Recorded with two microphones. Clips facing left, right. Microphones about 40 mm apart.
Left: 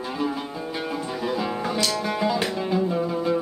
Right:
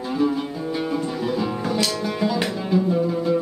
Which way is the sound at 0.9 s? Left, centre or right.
Centre.